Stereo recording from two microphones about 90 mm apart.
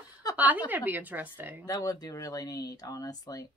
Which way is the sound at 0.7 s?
20° right (ahead or behind).